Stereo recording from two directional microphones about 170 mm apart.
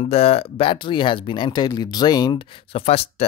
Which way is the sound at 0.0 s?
35° left (ahead or behind).